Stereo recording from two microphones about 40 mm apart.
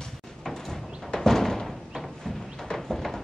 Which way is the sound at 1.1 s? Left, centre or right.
Centre.